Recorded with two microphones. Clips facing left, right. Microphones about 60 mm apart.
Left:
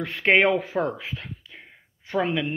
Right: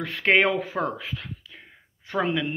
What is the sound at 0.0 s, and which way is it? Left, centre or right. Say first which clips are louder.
Speech: left 1 dB; centre.